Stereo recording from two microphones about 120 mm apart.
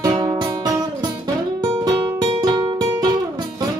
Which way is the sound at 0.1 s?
40° right (ahead or behind).